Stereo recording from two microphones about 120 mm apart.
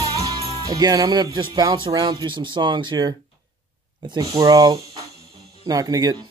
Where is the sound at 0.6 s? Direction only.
30° right (ahead or behind).